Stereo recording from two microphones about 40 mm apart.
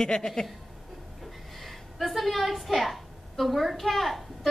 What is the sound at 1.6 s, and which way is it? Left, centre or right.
A woman's voice, centre.